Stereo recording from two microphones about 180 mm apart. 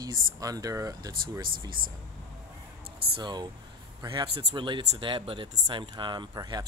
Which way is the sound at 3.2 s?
25° right (ahead or behind).